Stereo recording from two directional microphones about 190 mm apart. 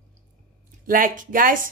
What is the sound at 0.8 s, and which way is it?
Speech, 45° right (ahead or behind).